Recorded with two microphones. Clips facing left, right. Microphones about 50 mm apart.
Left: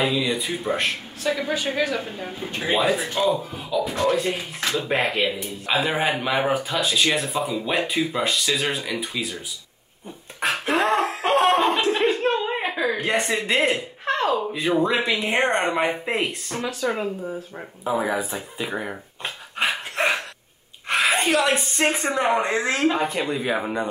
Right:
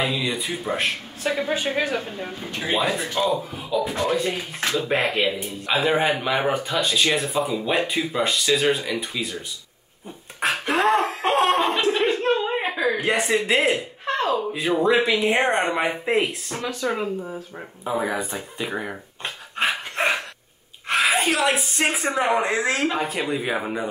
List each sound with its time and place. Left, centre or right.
0.0 s speech: centre
1.2 s a woman's voice: right
2.0 s speech: centre
2.5 s speech: centre
3.2 s speech: centre
10.5 s a sound: centre
11.1 s chicken: centre
11.9 s chuckle: centre
12.5 s a sound: centre
14.5 s speech: centre